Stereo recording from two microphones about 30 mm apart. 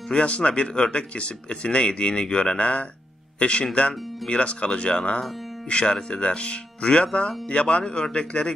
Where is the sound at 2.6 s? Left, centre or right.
Left.